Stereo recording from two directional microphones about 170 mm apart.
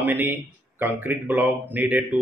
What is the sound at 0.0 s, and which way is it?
Speech, 10° right (ahead or behind).